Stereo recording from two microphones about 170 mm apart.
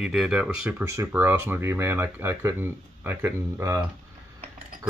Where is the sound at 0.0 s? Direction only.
Centre (ahead or behind).